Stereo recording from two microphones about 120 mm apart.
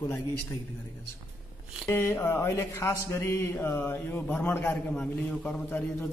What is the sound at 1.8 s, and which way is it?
A man's voice, 20° left (ahead or behind).